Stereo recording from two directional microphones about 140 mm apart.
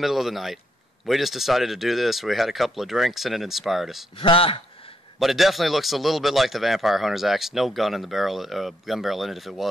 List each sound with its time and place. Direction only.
0.0 s a man's voice: centre (ahead or behind)
4.2 s a man's voice: 40° left (ahead or behind)
5.2 s a man's voice: centre (ahead or behind)